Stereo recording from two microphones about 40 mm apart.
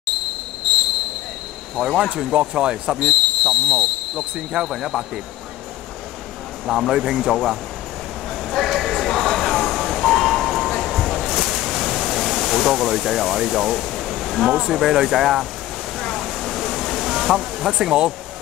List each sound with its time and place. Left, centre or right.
1.8 s speech: centre
2.3 s speech: right
3.0 s a sound: centre
4.5 s speech: centre
6.6 s speech: centre
8.5 s vehicle: centre
10.7 s a sound: centre
14.7 s speech: centre
16.0 s a sound: centre